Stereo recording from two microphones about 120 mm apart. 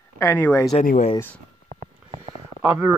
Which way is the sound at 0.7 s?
65° left (ahead or behind).